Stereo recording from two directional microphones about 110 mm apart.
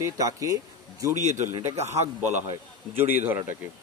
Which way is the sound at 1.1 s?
90° right.